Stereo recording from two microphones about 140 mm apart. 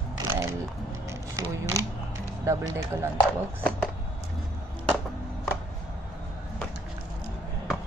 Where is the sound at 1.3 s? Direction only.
20° right (ahead or behind).